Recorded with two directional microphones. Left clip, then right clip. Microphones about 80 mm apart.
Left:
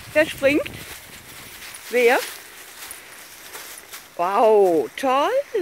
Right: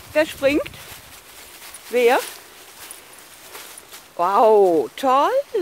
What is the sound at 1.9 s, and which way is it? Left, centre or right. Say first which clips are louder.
Speech: right 1 dB; right.